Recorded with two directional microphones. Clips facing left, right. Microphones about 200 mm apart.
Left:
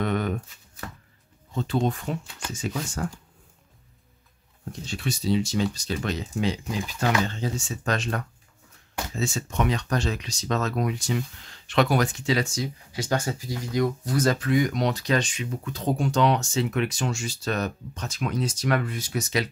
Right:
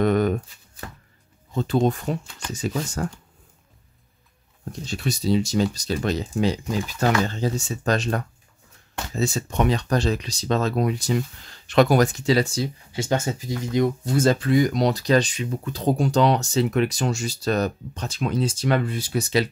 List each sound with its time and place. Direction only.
0.0 s a sound: 40° right (ahead or behind)
1.5 s speech: 40° right (ahead or behind)
4.8 s speech: 40° right (ahead or behind)